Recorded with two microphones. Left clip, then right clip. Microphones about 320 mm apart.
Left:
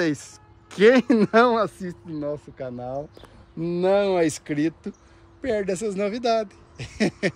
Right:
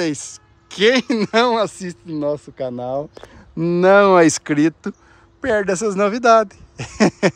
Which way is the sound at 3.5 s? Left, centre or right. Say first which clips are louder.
Right 9 dB; right.